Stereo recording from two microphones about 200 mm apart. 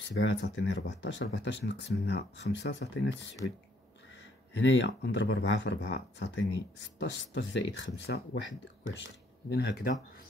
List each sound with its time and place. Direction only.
0.1 s speech: 70° left (ahead or behind)
4.6 s speech: 65° left (ahead or behind)